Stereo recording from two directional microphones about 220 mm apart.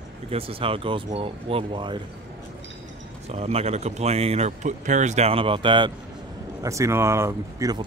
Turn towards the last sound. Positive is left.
turn(degrees=-15)  # may be behind; listen again after turning